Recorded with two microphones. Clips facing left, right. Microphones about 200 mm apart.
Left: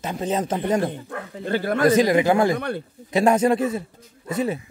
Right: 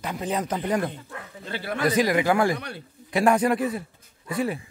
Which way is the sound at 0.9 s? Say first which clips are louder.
Left 7 dB; 50° left (ahead or behind).